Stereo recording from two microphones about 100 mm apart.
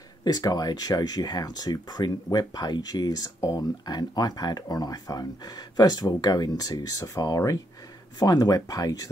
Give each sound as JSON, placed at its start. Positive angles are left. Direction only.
{"t": 0.2, "sound": "speech", "side_deg": 40}